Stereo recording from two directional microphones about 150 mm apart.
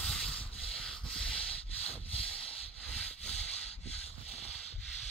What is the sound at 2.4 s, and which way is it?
Rub, 40° left (ahead or behind).